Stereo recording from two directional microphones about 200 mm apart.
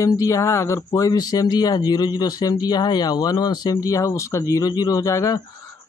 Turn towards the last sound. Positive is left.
turn(degrees=15)  # may be behind; listen again after turning